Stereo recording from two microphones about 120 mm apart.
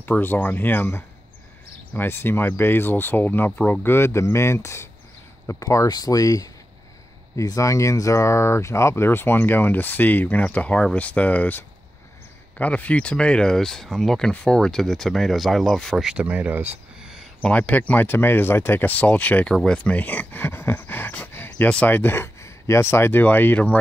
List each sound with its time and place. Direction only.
0.0 s speech: 15° left (ahead or behind); by 16.7 s 15° right (ahead or behind)
17.0 s a sound: 5° right (ahead or behind)
17.4 s speech: 10° left (ahead or behind)